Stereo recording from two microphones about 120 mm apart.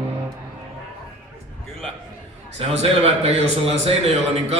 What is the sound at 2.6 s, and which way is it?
A man's voice, 55° right (ahead or behind).